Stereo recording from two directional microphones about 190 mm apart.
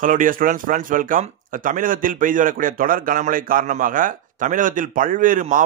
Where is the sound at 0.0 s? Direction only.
45° right (ahead or behind).